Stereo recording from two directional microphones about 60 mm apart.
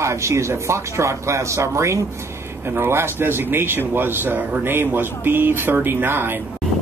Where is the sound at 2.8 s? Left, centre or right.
Right.